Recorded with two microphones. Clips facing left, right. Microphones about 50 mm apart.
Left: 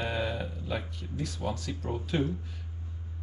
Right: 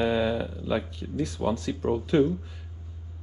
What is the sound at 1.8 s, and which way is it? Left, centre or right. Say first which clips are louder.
Speech: right 8 dB; right.